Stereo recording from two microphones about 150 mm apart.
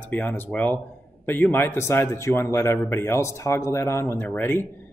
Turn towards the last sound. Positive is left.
turn(degrees=15)  # may be behind; listen again after turning